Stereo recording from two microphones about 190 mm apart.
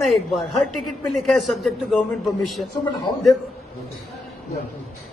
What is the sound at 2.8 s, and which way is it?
Speech, 25° left (ahead or behind).